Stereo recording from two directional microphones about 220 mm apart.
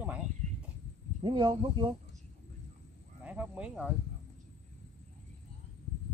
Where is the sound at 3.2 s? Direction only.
5° right (ahead or behind).